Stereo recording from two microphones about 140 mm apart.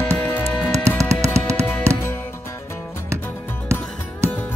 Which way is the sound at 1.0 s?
20° right (ahead or behind).